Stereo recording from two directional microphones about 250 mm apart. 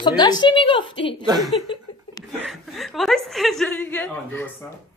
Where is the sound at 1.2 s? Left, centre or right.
Centre.